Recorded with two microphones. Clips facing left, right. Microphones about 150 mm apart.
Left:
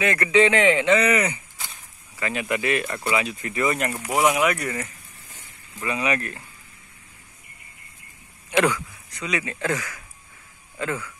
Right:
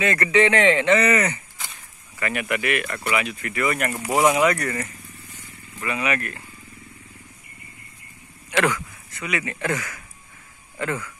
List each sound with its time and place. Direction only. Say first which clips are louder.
0.0 s speech: even; 15° left (ahead or behind)
3.9 s speech: right 3 dB; 10° right (ahead or behind)
4.2 s speech: right 2 dB; 10° left (ahead or behind)
8.5 s speech: left 1 dB; 15° left (ahead or behind)
10.8 s speech: right 1 dB; 15° left (ahead or behind)